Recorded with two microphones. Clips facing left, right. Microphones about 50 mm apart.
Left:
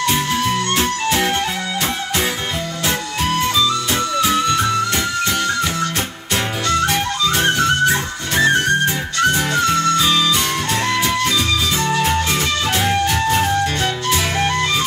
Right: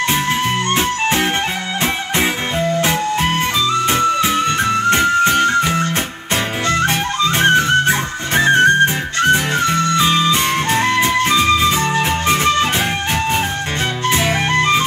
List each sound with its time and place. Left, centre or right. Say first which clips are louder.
0.7 s music: right 2 dB; right
2.8 s music: right 4 dB; right
6.7 s music: even; right
14.1 s music: right 4 dB; right